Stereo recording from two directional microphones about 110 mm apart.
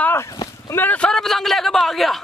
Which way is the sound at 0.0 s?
20° left (ahead or behind).